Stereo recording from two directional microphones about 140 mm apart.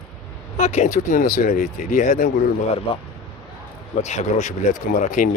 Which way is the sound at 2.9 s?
40° left (ahead or behind).